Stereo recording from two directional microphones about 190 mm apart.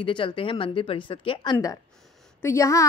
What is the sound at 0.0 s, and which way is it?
A woman's voice, 25° left (ahead or behind).